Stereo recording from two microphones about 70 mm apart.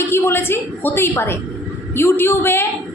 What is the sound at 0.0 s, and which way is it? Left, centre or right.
A woman's voice, left.